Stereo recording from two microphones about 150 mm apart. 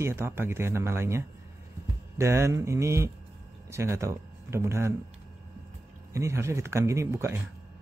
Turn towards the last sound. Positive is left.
turn(degrees=-20)  # may be behind; listen again after turning